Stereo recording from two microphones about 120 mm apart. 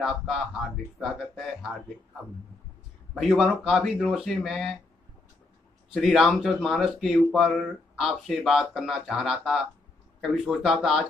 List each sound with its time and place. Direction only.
0.0 s speech: centre (ahead or behind)
3.2 s speech: centre (ahead or behind)
5.9 s speech: centre (ahead or behind)